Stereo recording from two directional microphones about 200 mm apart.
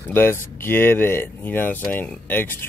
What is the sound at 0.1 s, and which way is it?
Speech, 10° left (ahead or behind).